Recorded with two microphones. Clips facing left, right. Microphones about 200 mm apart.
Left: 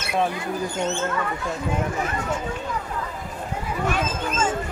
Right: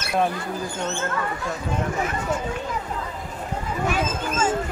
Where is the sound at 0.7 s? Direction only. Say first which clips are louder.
Left 3 dB; 20° left (ahead or behind).